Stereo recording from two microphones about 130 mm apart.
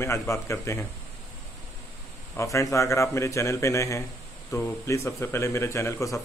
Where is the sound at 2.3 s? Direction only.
25° left (ahead or behind).